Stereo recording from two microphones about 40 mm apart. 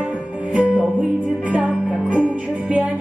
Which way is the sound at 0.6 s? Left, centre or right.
Right.